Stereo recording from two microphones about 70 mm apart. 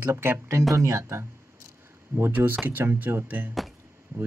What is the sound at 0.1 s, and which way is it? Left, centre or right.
Speech, right.